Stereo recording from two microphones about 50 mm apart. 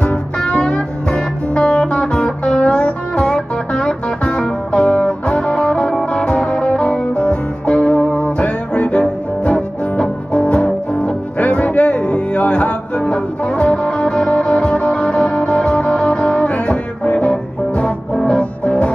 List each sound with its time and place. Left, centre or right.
0.4 s music: centre